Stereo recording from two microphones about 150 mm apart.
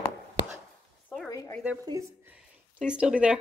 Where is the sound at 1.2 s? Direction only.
20° left (ahead or behind).